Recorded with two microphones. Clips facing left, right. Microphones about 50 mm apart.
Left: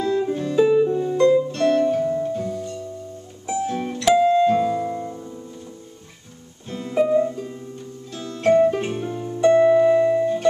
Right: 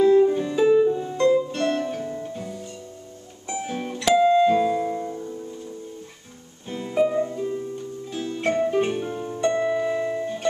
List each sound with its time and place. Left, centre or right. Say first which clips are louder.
0.0 s music: right 5 dB; right
0.6 s harp: left 2 dB; centre
1.5 s music: left 5 dB; centre
1.8 s music: left 8 dB; centre
4.1 s music: left 1 dB; centre
6.7 s music: left 3 dB; centre
8.5 s music: left 5 dB; centre
9.4 s music: left 9 dB; centre
10.2 s music: left 6 dB; centre